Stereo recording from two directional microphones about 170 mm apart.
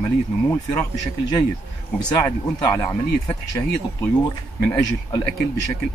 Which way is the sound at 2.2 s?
20° left (ahead or behind).